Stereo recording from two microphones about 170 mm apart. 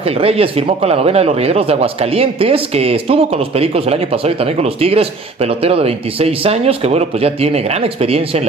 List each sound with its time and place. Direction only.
0.2 s speech: 35° right (ahead or behind)